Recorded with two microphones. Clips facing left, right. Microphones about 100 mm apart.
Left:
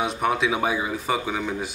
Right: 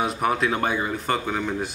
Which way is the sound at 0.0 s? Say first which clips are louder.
Even; centre (ahead or behind).